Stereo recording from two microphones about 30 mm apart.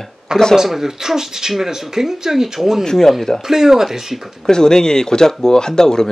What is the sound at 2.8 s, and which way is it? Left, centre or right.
Speech, centre.